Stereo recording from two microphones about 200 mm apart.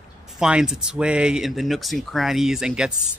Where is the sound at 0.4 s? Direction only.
5° right (ahead or behind).